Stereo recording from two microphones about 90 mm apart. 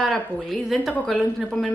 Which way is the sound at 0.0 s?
Centre (ahead or behind).